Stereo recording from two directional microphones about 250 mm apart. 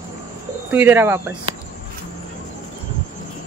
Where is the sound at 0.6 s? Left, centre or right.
Centre.